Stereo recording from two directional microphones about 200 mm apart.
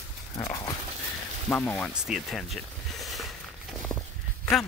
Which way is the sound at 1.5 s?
5° left (ahead or behind).